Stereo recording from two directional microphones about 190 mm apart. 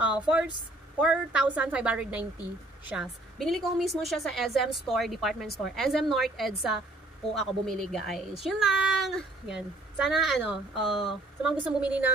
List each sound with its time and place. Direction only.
0.0 s a woman's voice: 5° right (ahead or behind)